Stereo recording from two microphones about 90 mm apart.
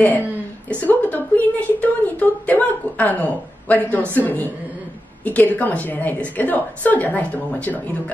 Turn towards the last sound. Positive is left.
turn(degrees=20)  # may be behind; listen again after turning